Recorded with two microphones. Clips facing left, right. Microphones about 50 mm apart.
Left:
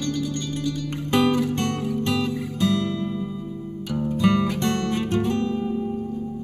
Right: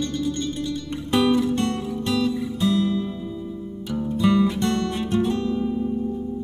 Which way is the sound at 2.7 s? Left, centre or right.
Left.